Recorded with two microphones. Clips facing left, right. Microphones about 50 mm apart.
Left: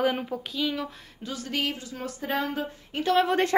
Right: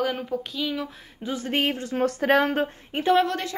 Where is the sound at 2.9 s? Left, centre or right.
Right.